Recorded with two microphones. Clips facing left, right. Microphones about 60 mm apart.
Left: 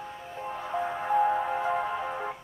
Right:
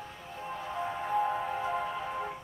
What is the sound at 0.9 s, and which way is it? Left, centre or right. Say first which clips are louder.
Music: left 5 dB; left.